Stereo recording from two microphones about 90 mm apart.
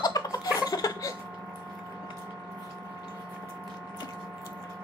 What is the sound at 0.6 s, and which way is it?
Laughter, 40° left (ahead or behind).